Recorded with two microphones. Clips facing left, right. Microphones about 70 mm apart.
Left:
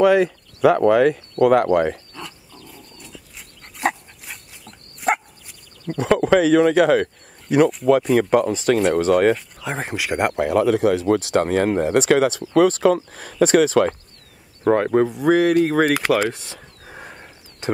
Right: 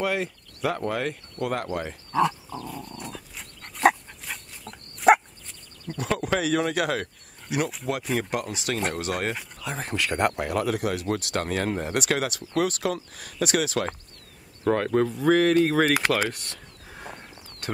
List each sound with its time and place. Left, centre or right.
0.0 s speech: left
3.3 s dog: centre
5.9 s speech: left
8.2 s speech: left
14.7 s speech: centre
16.9 s a sound: centre